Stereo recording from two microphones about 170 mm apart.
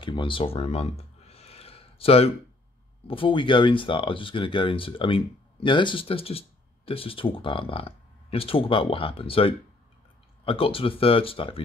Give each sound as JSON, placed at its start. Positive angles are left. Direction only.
{"t": 0.0, "sound": "clicking", "side_deg": 30}
{"t": 3.1, "sound": "speech", "side_deg": 30}